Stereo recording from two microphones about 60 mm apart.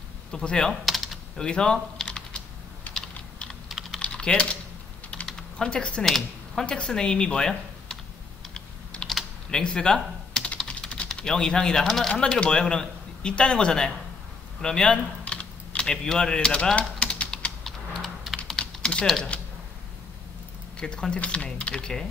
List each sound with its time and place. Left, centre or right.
0.3 s speech: centre
0.8 s typing: centre
1.4 s typing: centre
3.6 s typing: centre
4.0 s typing: centre
6.0 s speech: centre
6.6 s speech: centre
8.5 s typing: centre
11.1 s speech: centre
12.1 s speech: centre
17.0 s typing: centre
17.6 s a sound: centre
18.5 s typing: centre
20.8 s speech: centre